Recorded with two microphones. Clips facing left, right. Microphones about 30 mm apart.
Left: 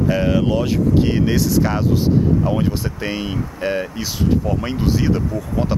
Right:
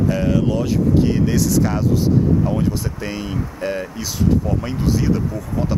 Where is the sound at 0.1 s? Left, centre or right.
Left.